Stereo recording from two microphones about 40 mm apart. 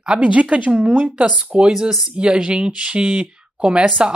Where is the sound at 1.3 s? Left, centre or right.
Right.